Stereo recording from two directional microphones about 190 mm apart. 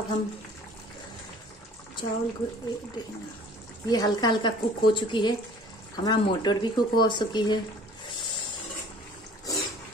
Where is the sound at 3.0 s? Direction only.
25° left (ahead or behind).